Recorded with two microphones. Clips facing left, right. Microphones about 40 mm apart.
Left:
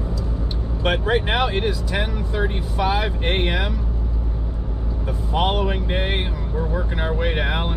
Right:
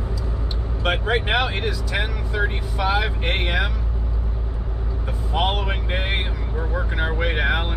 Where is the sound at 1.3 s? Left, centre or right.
Centre.